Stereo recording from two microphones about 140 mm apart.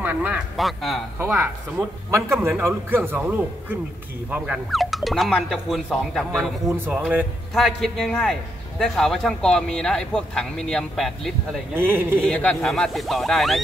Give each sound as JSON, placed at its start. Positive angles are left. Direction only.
{"t": 0.0, "sound": "quack", "side_deg": -10}
{"t": 0.6, "sound": "a man's voice", "side_deg": 0}
{"t": 1.2, "sound": "a man's voice", "side_deg": -15}
{"t": 7.0, "sound": "speech", "side_deg": -10}
{"t": 7.5, "sound": "a man's voice", "side_deg": 0}
{"t": 11.7, "sound": "speech", "side_deg": -15}
{"t": 12.2, "sound": "a man's voice", "side_deg": 10}